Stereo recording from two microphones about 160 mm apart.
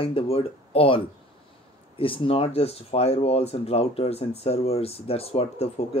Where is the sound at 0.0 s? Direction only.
35° left (ahead or behind).